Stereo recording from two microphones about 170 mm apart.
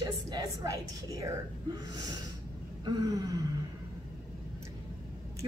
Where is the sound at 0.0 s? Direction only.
20° right (ahead or behind).